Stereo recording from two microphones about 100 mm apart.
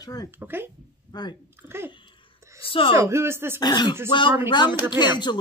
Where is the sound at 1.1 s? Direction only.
45° left (ahead or behind).